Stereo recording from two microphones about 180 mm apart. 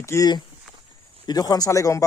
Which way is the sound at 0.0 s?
20° left (ahead or behind).